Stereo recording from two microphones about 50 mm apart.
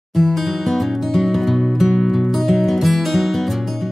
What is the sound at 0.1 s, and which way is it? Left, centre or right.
Music, centre.